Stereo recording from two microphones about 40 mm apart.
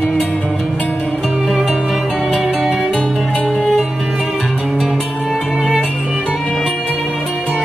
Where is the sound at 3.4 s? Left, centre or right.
Centre.